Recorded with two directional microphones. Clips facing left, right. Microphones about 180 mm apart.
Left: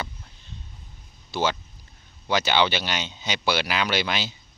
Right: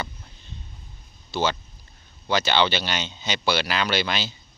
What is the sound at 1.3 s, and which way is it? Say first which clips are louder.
Speech: right 1 dB; 10° left (ahead or behind).